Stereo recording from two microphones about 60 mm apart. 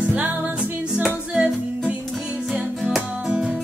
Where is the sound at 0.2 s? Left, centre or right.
Centre.